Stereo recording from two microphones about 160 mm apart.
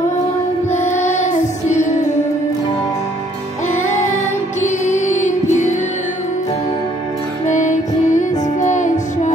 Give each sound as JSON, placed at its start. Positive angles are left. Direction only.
{"t": 0.7, "sound": "music", "side_deg": 50}
{"t": 4.6, "sound": "music", "side_deg": 50}
{"t": 7.4, "sound": "music", "side_deg": 50}